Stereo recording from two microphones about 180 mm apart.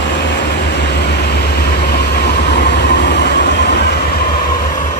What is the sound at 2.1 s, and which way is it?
Vehicle, 65° left (ahead or behind).